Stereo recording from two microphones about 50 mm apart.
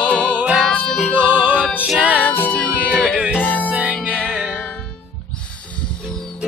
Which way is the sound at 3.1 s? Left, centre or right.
Centre.